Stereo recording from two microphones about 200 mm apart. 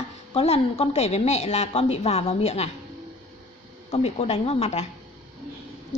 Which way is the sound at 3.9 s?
30° left (ahead or behind).